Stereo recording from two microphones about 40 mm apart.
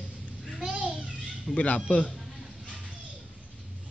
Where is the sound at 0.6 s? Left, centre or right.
Centre.